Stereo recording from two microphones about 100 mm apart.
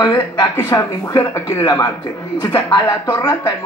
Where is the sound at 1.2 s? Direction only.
25° left (ahead or behind).